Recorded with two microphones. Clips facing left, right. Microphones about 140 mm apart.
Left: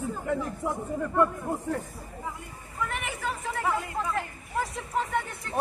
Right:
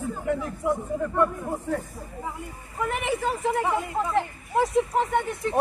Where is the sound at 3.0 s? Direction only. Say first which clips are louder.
Right 7 dB; 25° right (ahead or behind).